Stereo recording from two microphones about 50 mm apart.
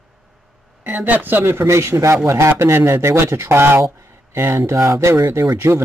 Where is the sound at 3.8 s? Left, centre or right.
Right.